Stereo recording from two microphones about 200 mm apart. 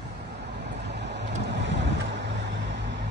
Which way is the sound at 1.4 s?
60° right (ahead or behind).